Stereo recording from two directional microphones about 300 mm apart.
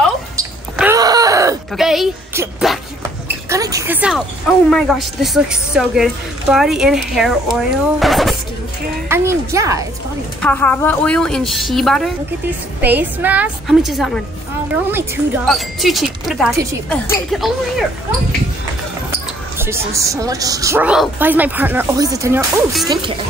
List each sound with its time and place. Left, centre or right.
0.4 s wail: centre
3.4 s a woman's voice: centre
10.4 s a woman's voice: centre
19.6 s speech: centre